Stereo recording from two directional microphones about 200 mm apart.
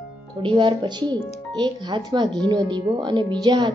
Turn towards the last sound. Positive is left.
turn(degrees=-20)  # may be behind; listen again after turning